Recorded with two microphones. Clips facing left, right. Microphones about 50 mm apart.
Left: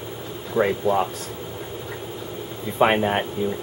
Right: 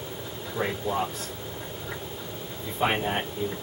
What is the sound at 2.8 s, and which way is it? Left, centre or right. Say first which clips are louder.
Speech: left 8 dB; left.